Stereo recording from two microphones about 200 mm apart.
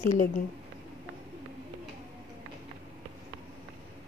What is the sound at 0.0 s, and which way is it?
Speech, 35° left (ahead or behind).